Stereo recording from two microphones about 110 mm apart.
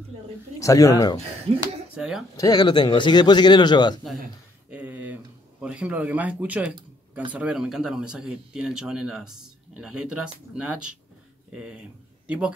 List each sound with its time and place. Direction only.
0.6 s a man's voice: 30° left (ahead or behind)
2.0 s speech: 5° right (ahead or behind)
2.3 s a man's voice: 35° left (ahead or behind)
4.6 s a sound: 15° right (ahead or behind)
7.3 s speech: 10° right (ahead or behind)
11.5 s speech: 10° right (ahead or behind)